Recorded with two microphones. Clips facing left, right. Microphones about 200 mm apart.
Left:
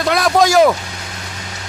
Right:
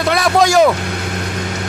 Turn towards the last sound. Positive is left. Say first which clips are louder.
# even
turn(degrees=0)  # may be behind; listen again after turning